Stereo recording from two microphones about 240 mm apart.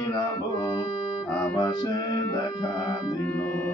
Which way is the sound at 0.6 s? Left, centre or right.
Centre.